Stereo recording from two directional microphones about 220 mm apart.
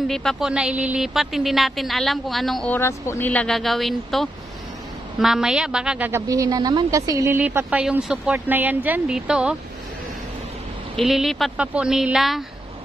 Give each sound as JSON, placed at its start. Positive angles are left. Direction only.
{"t": 0.1, "sound": "a woman's voice", "side_deg": 0}
{"t": 11.0, "sound": "a woman's voice", "side_deg": 0}